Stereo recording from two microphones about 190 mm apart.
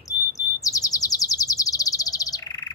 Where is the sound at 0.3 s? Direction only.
20° left (ahead or behind).